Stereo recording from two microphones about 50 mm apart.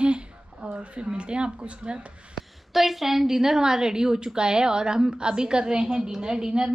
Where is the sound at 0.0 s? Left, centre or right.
Right.